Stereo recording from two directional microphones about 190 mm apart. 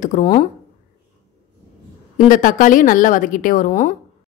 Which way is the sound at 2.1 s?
45° left (ahead or behind).